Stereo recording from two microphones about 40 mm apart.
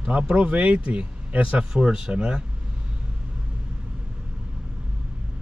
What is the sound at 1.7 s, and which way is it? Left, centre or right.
Speech, centre.